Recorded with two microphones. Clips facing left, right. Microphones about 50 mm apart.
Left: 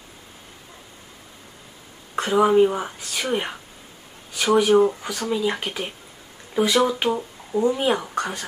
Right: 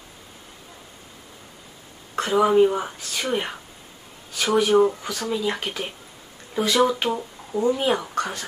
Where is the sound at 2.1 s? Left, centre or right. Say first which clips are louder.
Left 1 dB; centre.